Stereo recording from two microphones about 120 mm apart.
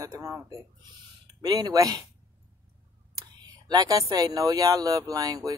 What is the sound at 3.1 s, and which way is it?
Speech, 35° right (ahead or behind).